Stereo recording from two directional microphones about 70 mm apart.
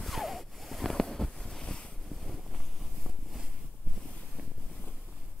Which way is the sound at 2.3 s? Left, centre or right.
Centre.